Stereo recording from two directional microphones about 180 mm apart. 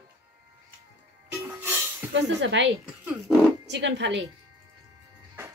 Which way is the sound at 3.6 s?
75° right (ahead or behind).